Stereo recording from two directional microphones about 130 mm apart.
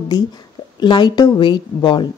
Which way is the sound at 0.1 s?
30° left (ahead or behind).